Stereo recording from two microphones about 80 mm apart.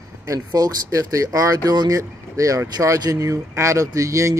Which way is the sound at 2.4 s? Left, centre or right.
Right.